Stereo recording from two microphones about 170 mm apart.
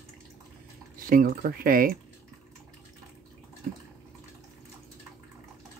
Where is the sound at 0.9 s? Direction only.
55° right (ahead or behind).